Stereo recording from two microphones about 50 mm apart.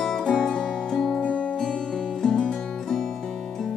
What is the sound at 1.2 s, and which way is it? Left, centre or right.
Music, left.